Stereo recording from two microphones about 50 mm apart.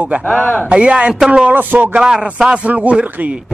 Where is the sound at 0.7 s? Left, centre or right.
Right.